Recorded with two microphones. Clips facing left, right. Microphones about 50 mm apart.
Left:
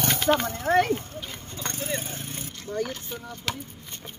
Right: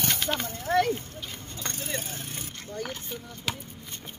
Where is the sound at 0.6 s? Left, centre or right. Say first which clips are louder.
Left 1 dB; left.